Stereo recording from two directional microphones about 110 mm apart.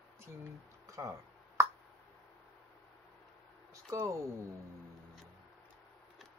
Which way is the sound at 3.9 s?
30° right (ahead or behind).